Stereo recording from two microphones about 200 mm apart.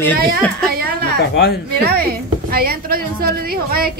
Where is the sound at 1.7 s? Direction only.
50° right (ahead or behind).